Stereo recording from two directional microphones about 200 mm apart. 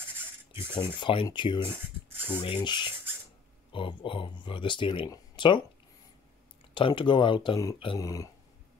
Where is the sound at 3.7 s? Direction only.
25° left (ahead or behind).